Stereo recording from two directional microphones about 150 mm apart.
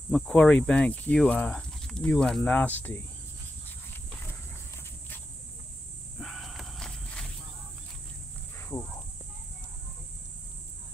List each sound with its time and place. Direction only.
0.1 s speech: centre (ahead or behind)
6.1 s walk: centre (ahead or behind)
8.5 s a sound: 20° left (ahead or behind)